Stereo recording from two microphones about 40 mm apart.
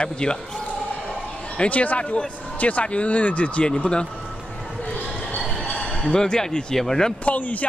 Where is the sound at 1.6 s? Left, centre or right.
Left.